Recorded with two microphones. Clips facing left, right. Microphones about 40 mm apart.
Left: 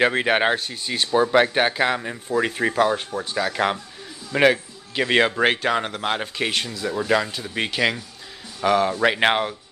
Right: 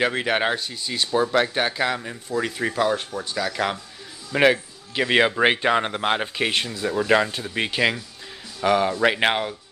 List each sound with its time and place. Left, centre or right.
0.0 s speech: centre
4.3 s a man's voice: centre
7.4 s speech: centre